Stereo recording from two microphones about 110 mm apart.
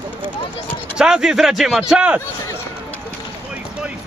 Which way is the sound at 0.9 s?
5° right (ahead or behind).